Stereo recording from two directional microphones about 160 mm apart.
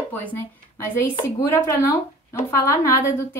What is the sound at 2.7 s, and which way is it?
Speech, 15° left (ahead or behind).